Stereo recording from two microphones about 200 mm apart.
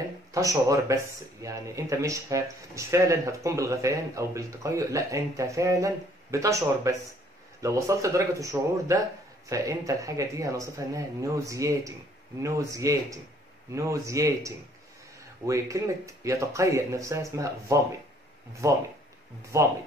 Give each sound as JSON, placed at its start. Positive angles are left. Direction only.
{"t": 0.3, "sound": "speech", "side_deg": -15}